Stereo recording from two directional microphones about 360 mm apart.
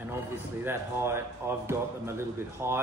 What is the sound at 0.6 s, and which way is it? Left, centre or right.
Speech, centre.